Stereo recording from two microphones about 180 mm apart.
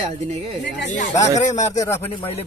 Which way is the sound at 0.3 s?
35° right (ahead or behind).